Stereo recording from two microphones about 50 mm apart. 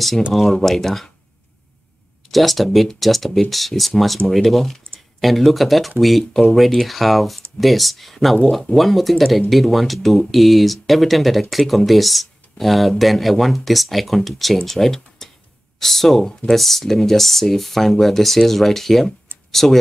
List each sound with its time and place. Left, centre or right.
0.3 s speech: centre
2.3 s speech: centre